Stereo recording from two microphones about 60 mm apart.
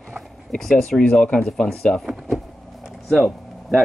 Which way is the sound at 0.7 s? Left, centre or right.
Centre.